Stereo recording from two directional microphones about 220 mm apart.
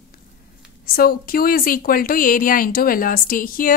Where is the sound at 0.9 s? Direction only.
40° left (ahead or behind).